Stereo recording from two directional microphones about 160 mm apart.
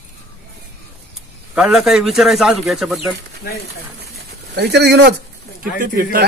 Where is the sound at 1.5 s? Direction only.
5° right (ahead or behind).